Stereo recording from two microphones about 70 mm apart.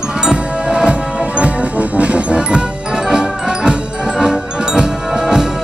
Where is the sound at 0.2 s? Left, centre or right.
Centre.